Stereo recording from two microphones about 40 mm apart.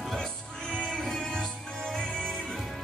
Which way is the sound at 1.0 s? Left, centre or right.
Centre.